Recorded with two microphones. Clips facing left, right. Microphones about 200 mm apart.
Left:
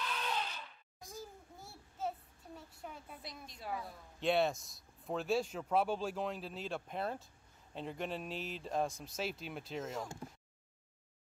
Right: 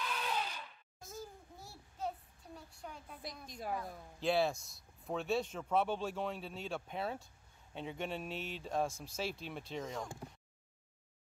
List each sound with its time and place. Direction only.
0.0 s a sound: 5° right (ahead or behind)
1.1 s child singing: centre (ahead or behind)
3.4 s a woman's voice: 45° right (ahead or behind)
3.7 s speech: centre (ahead or behind)